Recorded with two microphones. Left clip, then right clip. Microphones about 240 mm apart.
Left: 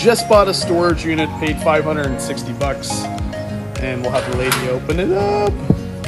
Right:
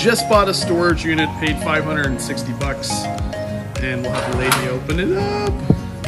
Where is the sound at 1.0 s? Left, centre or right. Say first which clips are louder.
Even; centre.